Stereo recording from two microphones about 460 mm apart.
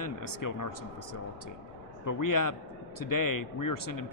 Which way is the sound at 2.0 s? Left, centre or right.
Left.